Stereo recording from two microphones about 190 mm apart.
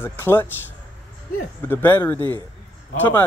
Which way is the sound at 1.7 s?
10° left (ahead or behind).